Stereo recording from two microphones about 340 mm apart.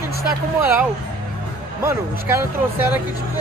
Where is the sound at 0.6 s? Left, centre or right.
Centre.